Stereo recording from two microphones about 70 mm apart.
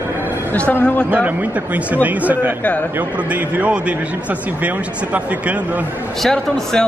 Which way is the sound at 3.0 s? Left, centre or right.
Right.